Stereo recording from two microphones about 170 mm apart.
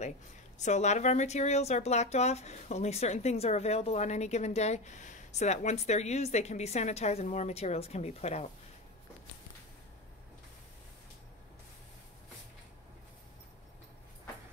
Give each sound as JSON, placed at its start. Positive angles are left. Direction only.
{"t": 0.6, "sound": "speech", "side_deg": 45}